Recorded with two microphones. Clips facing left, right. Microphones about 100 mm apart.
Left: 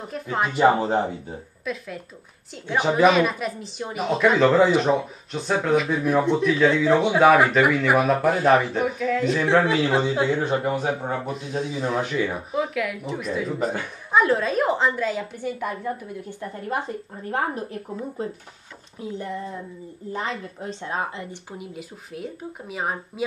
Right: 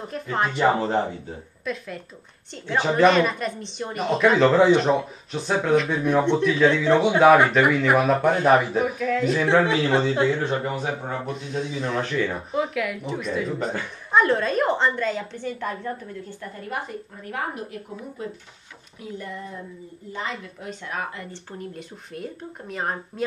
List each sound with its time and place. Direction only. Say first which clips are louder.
0.0 s a woman's voice: even; centre (ahead or behind)
1.6 s a woman's voice: right 1 dB; centre (ahead or behind)
11.1 s a woman's voice: left 1 dB; 5° left (ahead or behind); by 21.4 s 25° left (ahead or behind)
21.5 s a woman's voice: even; 5° left (ahead or behind)